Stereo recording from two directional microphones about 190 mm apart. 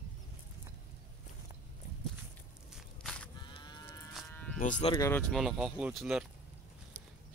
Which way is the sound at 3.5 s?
20° left (ahead or behind).